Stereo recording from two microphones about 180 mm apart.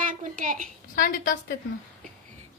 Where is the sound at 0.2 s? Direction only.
45° right (ahead or behind).